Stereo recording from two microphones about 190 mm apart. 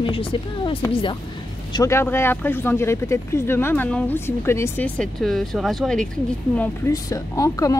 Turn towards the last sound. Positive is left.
turn(degrees=15)  # may be behind; listen again after turning